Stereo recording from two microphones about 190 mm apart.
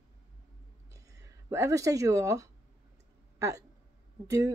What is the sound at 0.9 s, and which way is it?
Speech, 15° right (ahead or behind).